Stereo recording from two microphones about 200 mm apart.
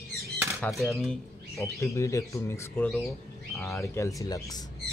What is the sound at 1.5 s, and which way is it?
Speech, 15° left (ahead or behind).